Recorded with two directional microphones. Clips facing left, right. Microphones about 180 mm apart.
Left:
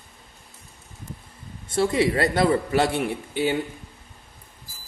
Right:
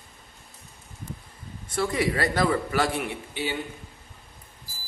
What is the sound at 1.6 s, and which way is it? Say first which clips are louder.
Speech: left 5 dB; 25° left (ahead or behind).